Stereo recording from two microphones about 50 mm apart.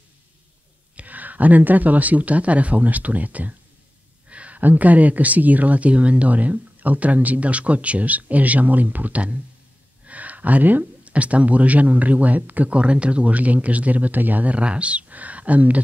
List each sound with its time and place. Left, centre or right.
0.9 s speech: right